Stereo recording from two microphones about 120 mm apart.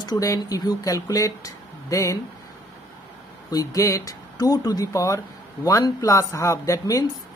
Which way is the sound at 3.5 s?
30° left (ahead or behind).